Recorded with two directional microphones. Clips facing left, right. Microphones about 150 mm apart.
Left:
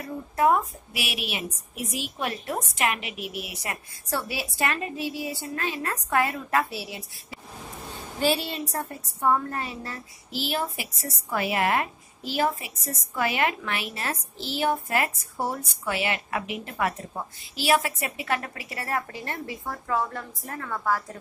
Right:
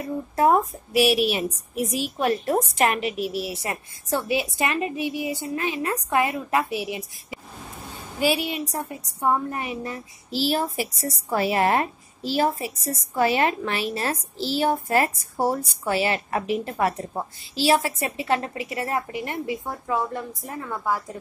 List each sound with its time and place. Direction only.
0.0 s a woman's voice: 35° right (ahead or behind); by 10.0 s 15° right (ahead or behind)
10.3 s a woman's voice: 35° right (ahead or behind); by 21.2 s 15° right (ahead or behind)